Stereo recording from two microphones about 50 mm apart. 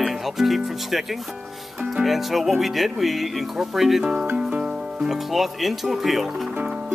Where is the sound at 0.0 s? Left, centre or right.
Centre.